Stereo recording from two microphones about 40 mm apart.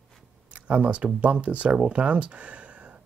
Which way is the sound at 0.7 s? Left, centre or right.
Right.